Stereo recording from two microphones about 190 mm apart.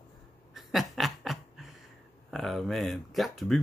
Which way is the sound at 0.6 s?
Centre (ahead or behind).